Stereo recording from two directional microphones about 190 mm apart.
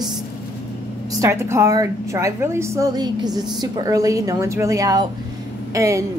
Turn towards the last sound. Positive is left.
turn(degrees=-15)  # may be behind; listen again after turning